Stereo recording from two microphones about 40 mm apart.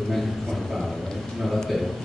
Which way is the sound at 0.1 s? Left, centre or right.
Centre.